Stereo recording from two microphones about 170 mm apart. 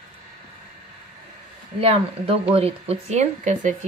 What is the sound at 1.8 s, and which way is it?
Speech, 35° right (ahead or behind).